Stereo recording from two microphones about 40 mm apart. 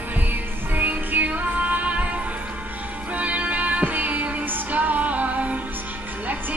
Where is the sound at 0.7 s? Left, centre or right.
Right.